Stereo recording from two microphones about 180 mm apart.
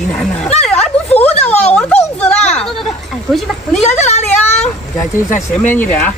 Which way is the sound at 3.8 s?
40° left (ahead or behind).